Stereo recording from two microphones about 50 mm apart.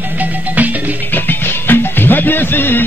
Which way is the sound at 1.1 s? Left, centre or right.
Left.